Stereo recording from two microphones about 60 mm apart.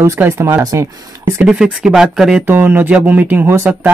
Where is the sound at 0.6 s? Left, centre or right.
Right.